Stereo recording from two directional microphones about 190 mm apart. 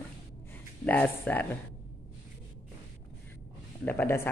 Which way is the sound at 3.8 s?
10° left (ahead or behind).